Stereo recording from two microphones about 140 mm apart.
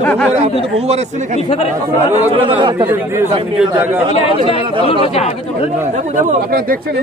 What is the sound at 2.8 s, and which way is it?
Speech, 20° right (ahead or behind).